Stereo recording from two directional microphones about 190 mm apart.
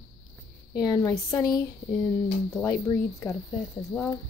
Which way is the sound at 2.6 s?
15° left (ahead or behind).